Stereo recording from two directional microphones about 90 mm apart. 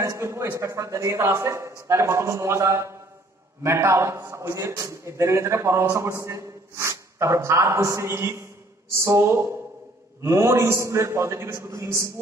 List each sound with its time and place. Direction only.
0.0 s a man's voice: 35° right (ahead or behind)